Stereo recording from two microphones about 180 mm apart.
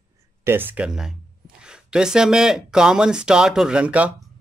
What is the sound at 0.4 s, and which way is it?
Speech, 10° right (ahead or behind).